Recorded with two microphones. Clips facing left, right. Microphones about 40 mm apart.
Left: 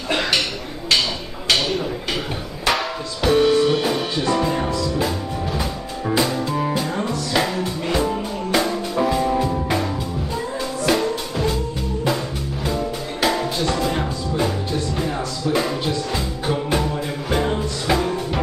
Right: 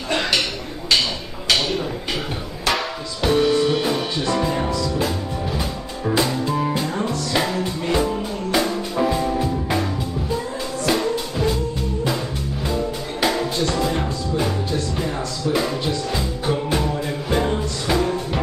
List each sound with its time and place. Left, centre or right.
0.1 s a sound: centre
2.6 s music: centre
12.6 s music: centre